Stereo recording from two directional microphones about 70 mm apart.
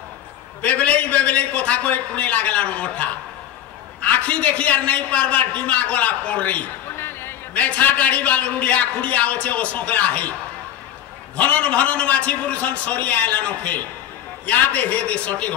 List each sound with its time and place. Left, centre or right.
0.6 s a man's voice: centre
7.0 s a sound: left
7.5 s a man's voice: left
11.3 s a man's voice: left